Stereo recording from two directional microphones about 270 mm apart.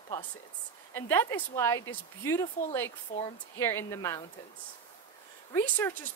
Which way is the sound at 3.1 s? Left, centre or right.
Left.